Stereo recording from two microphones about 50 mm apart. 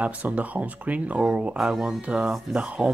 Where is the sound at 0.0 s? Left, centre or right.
Right.